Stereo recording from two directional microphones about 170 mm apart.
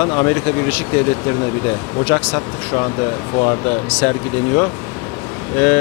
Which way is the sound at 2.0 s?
25° left (ahead or behind).